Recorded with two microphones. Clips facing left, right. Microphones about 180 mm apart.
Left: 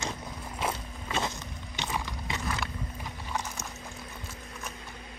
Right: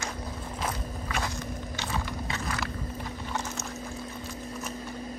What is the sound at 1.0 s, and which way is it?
Biting, 25° left (ahead or behind).